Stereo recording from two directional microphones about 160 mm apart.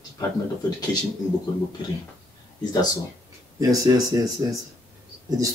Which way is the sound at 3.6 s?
20° right (ahead or behind).